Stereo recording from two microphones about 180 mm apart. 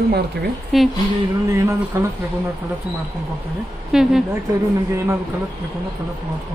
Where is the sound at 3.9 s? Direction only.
Centre (ahead or behind).